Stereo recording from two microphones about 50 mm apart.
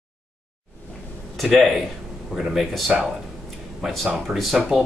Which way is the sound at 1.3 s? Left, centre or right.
Centre.